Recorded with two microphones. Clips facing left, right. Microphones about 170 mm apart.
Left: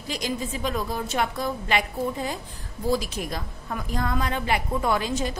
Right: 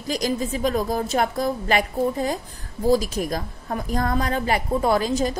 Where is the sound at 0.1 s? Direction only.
40° right (ahead or behind).